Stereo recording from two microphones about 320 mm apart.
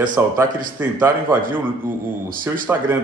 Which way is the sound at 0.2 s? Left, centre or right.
Centre.